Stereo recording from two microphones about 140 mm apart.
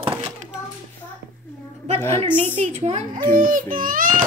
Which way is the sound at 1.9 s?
15° left (ahead or behind).